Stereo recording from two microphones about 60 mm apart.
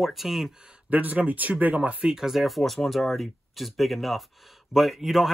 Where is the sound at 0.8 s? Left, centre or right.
Right.